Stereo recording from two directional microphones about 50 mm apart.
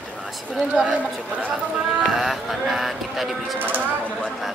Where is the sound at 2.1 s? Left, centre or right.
Centre.